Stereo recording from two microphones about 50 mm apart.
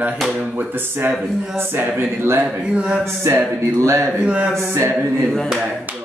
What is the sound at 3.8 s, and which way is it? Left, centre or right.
Speech, right.